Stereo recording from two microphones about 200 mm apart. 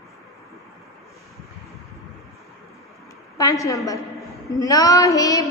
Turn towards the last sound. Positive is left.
turn(degrees=15)  # may be behind; listen again after turning